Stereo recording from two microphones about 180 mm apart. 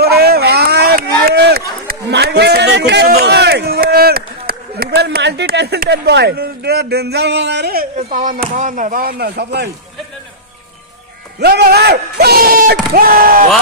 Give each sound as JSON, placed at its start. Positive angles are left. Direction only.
{"t": 0.0, "sound": "run", "side_deg": -60}
{"t": 7.9, "sound": "speech", "side_deg": -40}
{"t": 11.3, "sound": "speech", "side_deg": -60}